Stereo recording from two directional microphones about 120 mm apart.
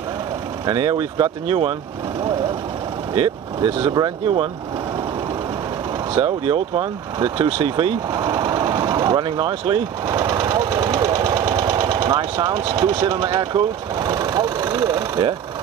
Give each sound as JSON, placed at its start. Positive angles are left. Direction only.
{"t": 0.7, "sound": "speech", "side_deg": -40}
{"t": 3.2, "sound": "speech", "side_deg": -45}
{"t": 6.1, "sound": "speech", "side_deg": -45}
{"t": 8.1, "sound": "sewing machine", "side_deg": -35}
{"t": 10.0, "sound": "engine", "side_deg": -30}
{"t": 12.7, "sound": "speech", "side_deg": -35}